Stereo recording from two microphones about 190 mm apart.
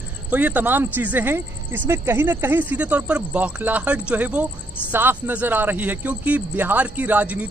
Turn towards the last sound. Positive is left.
turn(degrees=-5)  # may be behind; listen again after turning